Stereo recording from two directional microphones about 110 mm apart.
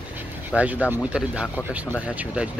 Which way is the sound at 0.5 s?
15° right (ahead or behind).